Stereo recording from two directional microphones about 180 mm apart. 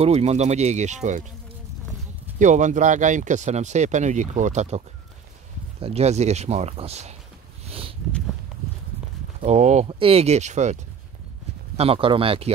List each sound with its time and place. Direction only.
0.0 s speech: 35° right (ahead or behind)
2.3 s speech: 45° right (ahead or behind)
7.6 s a sound: 30° right (ahead or behind)
9.4 s speech: 40° right (ahead or behind)